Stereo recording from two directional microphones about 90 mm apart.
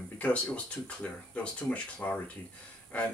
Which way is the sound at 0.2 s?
15° left (ahead or behind).